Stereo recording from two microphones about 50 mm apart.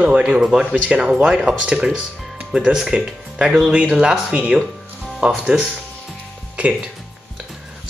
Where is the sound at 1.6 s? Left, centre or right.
Centre.